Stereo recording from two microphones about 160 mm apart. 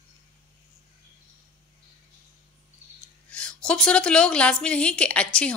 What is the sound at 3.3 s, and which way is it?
A woman's voice, 5° left (ahead or behind).